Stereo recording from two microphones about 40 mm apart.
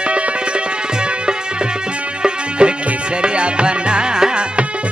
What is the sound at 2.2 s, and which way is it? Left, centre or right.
Music, right.